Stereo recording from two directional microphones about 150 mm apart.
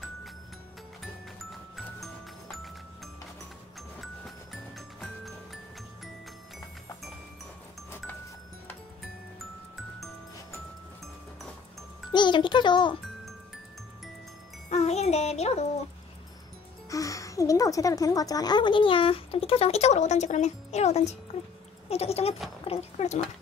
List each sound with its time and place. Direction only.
2.0 s music: centre (ahead or behind)
12.1 s a child's voice: 30° left (ahead or behind)
14.7 s music: 45° left (ahead or behind)
16.9 s speech: 20° left (ahead or behind); by 23.2 s 50° left (ahead or behind)